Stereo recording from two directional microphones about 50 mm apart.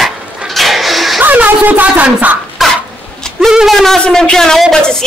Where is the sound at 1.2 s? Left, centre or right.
Right.